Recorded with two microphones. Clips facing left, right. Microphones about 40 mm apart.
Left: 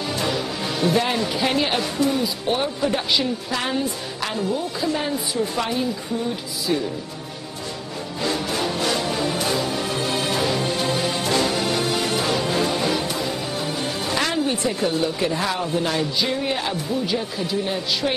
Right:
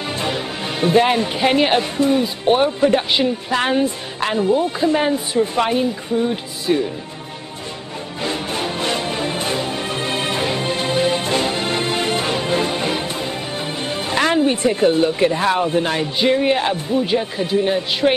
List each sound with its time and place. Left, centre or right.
0.1 s speech: right
8.2 s music: right